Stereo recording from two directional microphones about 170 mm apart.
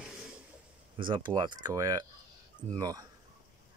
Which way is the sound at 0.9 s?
30° right (ahead or behind).